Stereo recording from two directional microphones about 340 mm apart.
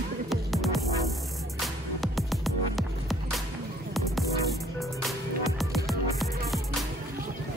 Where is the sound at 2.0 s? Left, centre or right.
Centre.